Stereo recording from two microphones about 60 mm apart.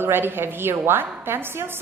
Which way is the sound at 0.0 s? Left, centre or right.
Right.